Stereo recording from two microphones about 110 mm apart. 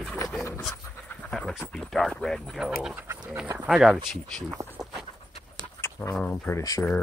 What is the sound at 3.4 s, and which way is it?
Speech, 20° right (ahead or behind).